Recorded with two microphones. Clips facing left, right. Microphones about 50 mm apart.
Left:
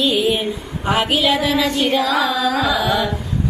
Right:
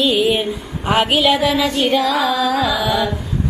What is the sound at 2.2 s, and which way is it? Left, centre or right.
Carnatic music, centre.